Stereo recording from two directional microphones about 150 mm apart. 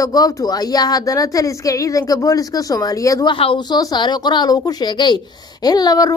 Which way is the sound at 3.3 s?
35° left (ahead or behind).